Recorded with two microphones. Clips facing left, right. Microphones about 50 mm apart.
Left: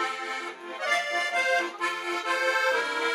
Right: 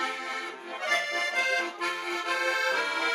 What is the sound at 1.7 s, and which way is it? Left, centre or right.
Accordion, centre.